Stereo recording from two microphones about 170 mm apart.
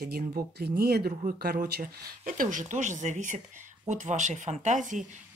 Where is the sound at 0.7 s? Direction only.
65° right (ahead or behind).